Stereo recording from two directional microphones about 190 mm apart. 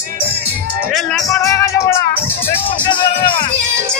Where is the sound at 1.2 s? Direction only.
15° left (ahead or behind).